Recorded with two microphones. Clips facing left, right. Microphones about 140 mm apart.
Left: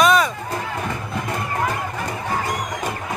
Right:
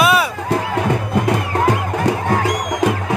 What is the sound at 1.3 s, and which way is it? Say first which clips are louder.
Music: right 6 dB; 90° right.